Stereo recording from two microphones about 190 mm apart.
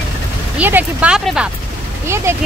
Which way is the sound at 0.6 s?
10° right (ahead or behind).